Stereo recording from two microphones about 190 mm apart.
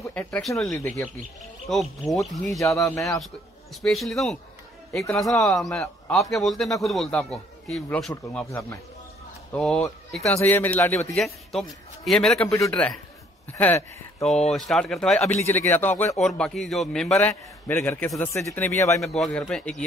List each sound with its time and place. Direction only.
0.1 s speech: 5° left (ahead or behind)
0.7 s a man's voice: 15° left (ahead or behind)
1.7 s speech: centre (ahead or behind)
2.6 s a man's voice: 15° left (ahead or behind)
3.0 s a man's voice: centre (ahead or behind)
11.1 s a man's voice: centre (ahead or behind)
18.9 s speech: centre (ahead or behind)